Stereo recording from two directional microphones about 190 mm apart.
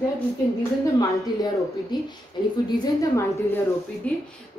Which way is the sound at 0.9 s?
20° left (ahead or behind).